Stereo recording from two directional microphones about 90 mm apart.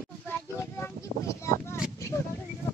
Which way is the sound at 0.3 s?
25° left (ahead or behind).